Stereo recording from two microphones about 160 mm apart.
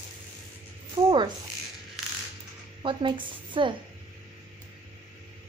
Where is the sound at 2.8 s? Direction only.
30° right (ahead or behind).